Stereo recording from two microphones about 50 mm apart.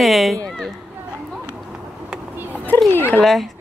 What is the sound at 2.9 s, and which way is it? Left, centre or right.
Speech, left.